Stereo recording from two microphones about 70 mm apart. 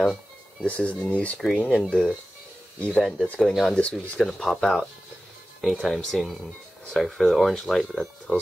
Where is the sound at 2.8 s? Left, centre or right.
Centre.